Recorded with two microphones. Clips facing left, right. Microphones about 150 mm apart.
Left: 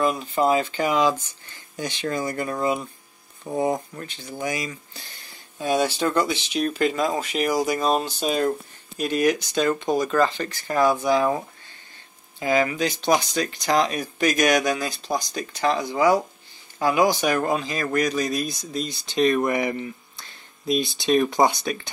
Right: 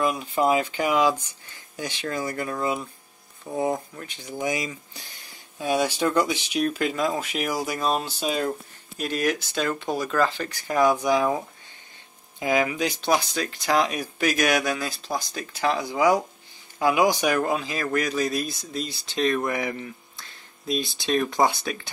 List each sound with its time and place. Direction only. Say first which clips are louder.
0.0 s speech: left 1 dB; 10° right (ahead or behind)
4.2 s speech: right 1 dB; 15° right (ahead or behind)